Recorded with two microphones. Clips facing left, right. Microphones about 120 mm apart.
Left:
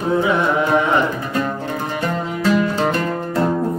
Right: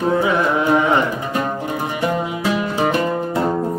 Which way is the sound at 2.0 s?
15° right (ahead or behind).